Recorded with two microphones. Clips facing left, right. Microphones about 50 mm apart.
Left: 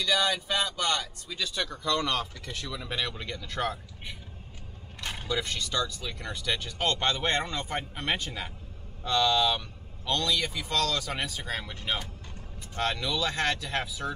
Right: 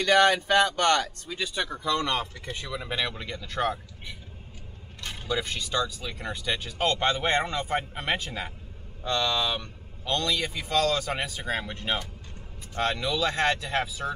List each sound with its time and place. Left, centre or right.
0.0 s speech: right
1.4 s speech: centre
5.0 s vehicle: centre
5.3 s speech: centre
8.0 s speech: centre
10.1 s speech: right
12.7 s speech: centre
13.4 s speech: centre